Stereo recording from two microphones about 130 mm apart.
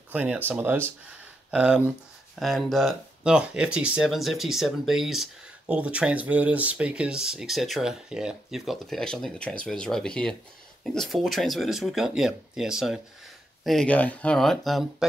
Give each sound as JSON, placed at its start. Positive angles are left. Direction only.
{"t": 0.1, "sound": "speech", "side_deg": -10}
{"t": 13.7, "sound": "speech", "side_deg": 5}